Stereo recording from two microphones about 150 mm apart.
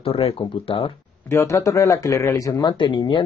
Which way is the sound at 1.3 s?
20° left (ahead or behind).